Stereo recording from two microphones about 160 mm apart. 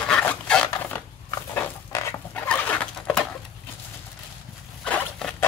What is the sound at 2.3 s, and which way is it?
Bird, 10° left (ahead or behind).